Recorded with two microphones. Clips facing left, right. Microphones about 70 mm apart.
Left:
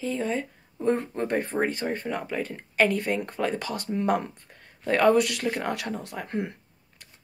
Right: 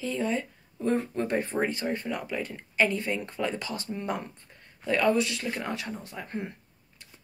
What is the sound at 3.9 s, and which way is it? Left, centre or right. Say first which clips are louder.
Speech: left 9 dB; left.